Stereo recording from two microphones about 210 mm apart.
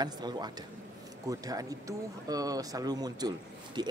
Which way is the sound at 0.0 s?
20° right (ahead or behind).